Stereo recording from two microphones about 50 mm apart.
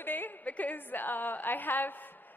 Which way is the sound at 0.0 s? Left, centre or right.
Left.